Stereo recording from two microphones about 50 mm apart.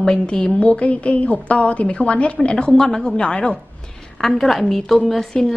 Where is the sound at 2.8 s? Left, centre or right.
Centre.